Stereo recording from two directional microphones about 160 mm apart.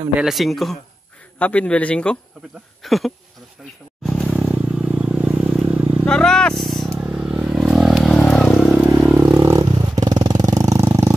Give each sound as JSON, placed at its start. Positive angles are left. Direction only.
{"t": 0.1, "sound": "a man's voice", "side_deg": -5}
{"t": 4.0, "sound": "vehicle", "side_deg": 0}
{"t": 6.0, "sound": "vehicle", "side_deg": 5}
{"t": 6.9, "sound": "vehicle", "side_deg": -10}
{"t": 8.7, "sound": "vehicle", "side_deg": -10}